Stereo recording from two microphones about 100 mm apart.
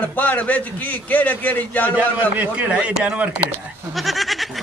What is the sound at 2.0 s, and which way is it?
Speech, 15° right (ahead or behind).